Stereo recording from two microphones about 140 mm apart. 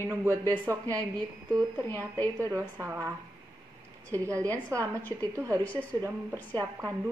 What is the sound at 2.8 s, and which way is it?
Speech, 15° right (ahead or behind).